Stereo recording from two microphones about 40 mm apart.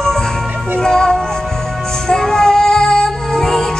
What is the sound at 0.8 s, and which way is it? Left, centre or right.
Music, centre.